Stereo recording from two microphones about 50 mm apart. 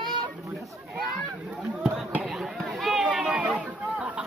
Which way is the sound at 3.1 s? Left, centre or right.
Right.